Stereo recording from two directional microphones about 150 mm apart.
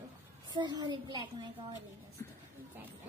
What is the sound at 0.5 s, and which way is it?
Speech, 30° right (ahead or behind).